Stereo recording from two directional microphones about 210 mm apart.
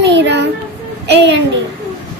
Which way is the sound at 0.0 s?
55° right (ahead or behind).